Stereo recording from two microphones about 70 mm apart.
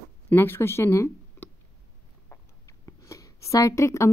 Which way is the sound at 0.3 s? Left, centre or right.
Left.